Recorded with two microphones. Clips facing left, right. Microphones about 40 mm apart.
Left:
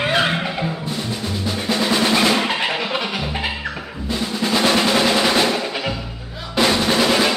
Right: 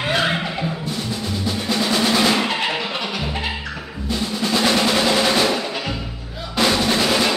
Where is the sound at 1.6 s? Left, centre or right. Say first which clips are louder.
Left 2 dB; centre.